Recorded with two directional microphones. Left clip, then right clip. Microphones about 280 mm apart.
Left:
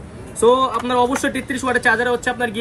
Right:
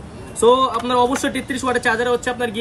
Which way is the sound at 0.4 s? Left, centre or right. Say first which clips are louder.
Even; centre.